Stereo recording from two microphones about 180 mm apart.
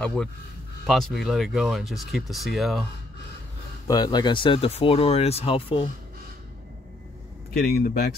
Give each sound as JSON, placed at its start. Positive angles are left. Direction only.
{"t": 0.0, "sound": "speech", "side_deg": 5}
{"t": 3.8, "sound": "speech", "side_deg": 20}
{"t": 7.5, "sound": "speech", "side_deg": 60}